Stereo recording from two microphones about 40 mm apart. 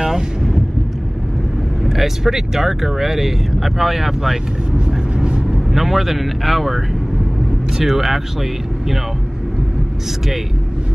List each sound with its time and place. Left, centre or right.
0.0 s wind noise: centre
1.9 s speech: centre
4.7 s vehicle: right
5.5 s speech: centre